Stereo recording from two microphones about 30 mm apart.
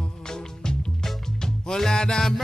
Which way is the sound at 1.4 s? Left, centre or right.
Centre.